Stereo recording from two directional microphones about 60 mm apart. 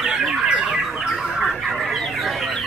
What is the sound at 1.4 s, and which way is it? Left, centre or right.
Chicken, centre.